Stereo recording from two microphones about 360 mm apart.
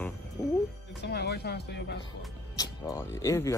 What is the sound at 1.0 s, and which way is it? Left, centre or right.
Speech, left.